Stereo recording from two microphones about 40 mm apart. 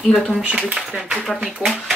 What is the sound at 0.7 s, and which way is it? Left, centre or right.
Speech, centre.